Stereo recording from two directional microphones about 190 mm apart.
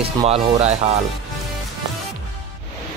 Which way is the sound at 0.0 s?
30° right (ahead or behind).